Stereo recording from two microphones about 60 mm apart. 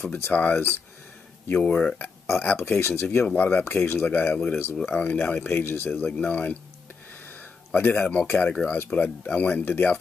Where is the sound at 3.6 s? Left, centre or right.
Left.